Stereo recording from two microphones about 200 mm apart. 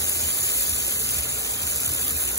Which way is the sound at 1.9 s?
55° left (ahead or behind).